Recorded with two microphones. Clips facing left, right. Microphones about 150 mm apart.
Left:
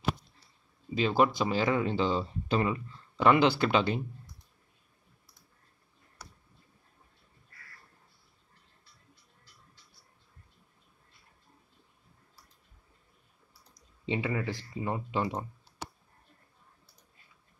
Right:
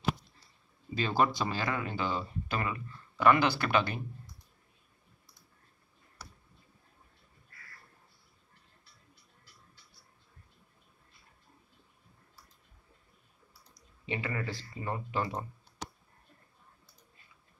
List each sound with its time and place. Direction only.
0.9 s speech: 15° left (ahead or behind)
14.0 s speech: 20° left (ahead or behind)